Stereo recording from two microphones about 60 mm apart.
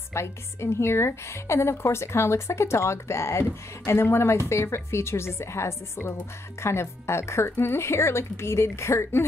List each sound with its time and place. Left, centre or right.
0.1 s a woman's voice: left